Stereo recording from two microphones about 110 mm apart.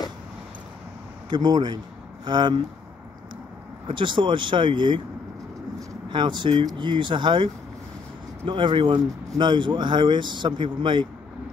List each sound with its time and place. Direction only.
1.3 s speech: 40° right (ahead or behind)
3.8 s speech: 50° right (ahead or behind)
6.0 s speech: 45° right (ahead or behind)